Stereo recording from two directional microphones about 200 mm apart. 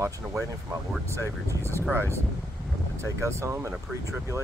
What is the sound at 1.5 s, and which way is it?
Speech, 15° right (ahead or behind).